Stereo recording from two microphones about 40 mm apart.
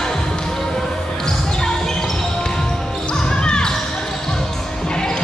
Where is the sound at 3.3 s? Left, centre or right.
Left.